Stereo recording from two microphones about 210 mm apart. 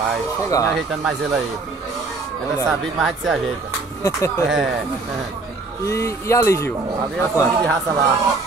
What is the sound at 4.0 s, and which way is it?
Speech, 15° left (ahead or behind).